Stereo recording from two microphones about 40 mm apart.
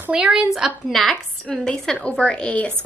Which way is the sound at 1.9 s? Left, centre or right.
Left.